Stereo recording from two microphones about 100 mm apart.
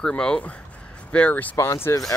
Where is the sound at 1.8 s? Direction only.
35° left (ahead or behind).